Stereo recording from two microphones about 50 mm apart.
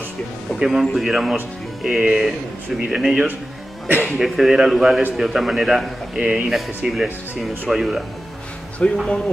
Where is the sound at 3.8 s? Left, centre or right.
Right.